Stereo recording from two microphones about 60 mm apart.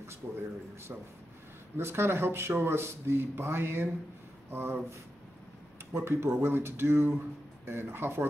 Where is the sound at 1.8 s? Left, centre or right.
Right.